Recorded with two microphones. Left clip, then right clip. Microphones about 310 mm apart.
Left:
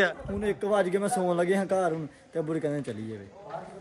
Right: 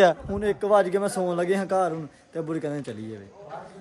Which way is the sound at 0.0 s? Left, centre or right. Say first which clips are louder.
Right 7 dB; centre.